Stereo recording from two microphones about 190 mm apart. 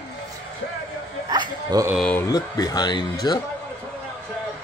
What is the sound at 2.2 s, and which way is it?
Speech, 20° left (ahead or behind).